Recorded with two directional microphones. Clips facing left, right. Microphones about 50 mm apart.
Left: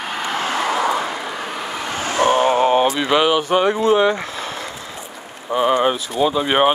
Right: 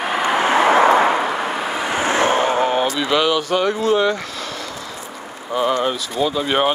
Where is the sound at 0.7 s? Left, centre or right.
Right.